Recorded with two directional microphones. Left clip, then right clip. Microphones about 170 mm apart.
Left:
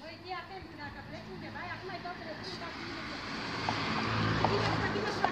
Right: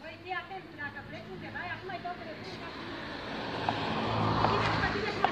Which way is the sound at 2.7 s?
40° left (ahead or behind).